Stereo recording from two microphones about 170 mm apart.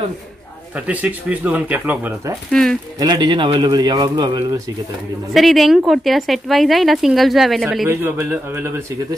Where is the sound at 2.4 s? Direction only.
5° left (ahead or behind).